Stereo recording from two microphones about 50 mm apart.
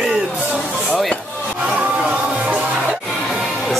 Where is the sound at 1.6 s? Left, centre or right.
Right.